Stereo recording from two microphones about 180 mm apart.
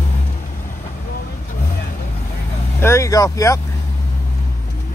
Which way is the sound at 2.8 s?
15° left (ahead or behind).